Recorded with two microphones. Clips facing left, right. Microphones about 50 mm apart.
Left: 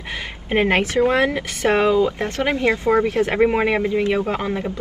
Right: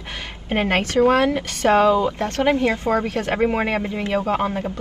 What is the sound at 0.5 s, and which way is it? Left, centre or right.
Speech, left.